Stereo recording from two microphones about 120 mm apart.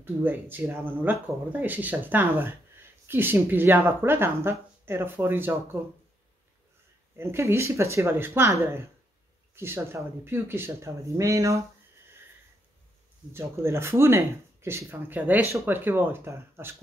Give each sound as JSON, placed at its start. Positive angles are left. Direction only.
{"t": 0.0, "sound": "speech", "side_deg": -15}
{"t": 7.2, "sound": "speech", "side_deg": -20}
{"t": 13.3, "sound": "speech", "side_deg": -20}